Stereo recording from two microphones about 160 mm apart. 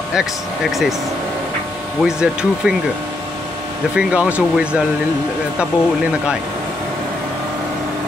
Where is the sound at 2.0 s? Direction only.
5° right (ahead or behind).